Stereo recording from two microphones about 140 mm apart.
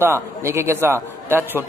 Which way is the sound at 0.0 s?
20° right (ahead or behind).